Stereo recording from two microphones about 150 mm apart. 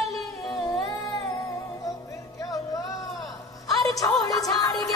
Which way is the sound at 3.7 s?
25° left (ahead or behind).